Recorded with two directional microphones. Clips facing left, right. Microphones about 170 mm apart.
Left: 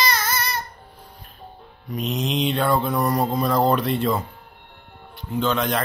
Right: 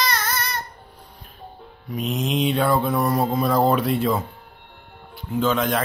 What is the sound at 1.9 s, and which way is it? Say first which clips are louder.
Speech: right 1 dB; centre (ahead or behind).